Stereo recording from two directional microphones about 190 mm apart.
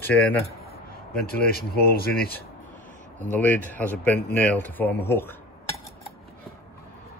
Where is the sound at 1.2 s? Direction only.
55° left (ahead or behind).